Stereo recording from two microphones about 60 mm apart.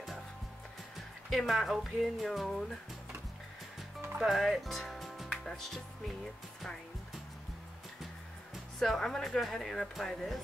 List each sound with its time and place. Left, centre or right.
1.3 s speech: centre
4.2 s music: centre
8.7 s speech: centre